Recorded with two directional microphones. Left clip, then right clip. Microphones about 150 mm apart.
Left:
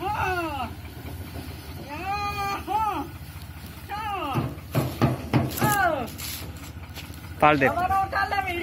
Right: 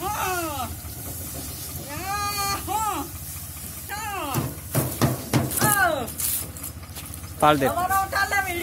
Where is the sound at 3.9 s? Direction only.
15° right (ahead or behind).